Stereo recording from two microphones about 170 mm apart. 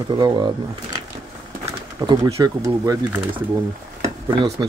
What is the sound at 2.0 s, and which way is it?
Speech, 25° right (ahead or behind).